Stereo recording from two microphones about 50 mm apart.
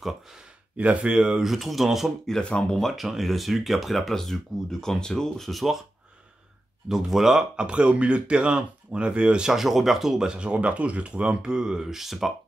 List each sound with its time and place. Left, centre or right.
1.0 s speech: centre
1.4 s speech: centre
6.9 s speech: centre
7.5 s speech: right
9.5 s speech: centre